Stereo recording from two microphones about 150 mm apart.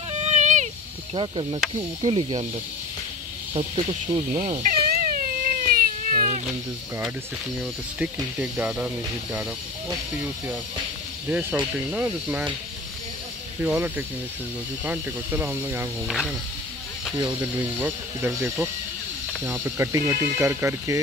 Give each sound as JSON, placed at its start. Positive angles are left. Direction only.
{"t": 0.2, "sound": "a sound", "side_deg": -50}
{"t": 1.1, "sound": "speech", "side_deg": -35}
{"t": 3.5, "sound": "speech", "side_deg": -40}
{"t": 4.4, "sound": "cat", "side_deg": -60}
{"t": 8.0, "sound": "speech", "side_deg": -5}
{"t": 11.2, "sound": "speech", "side_deg": -10}
{"t": 13.6, "sound": "speech", "side_deg": -15}
{"t": 16.1, "sound": "speech", "side_deg": 0}
{"t": 17.4, "sound": "speech", "side_deg": -10}